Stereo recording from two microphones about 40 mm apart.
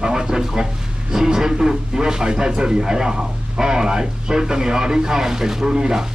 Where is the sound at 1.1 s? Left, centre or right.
Centre.